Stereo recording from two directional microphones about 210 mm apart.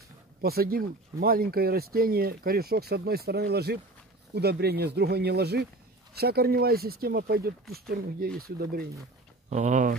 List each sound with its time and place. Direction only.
0.4 s speech: 45° right (ahead or behind)
9.5 s speech: 35° right (ahead or behind)